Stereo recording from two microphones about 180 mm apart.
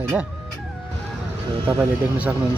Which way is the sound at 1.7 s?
10° right (ahead or behind).